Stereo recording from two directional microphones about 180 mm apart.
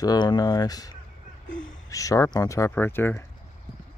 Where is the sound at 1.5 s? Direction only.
90° left.